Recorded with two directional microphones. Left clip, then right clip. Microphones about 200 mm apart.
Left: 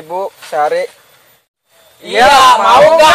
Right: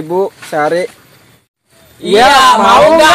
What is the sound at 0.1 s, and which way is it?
Speech, 5° left (ahead or behind).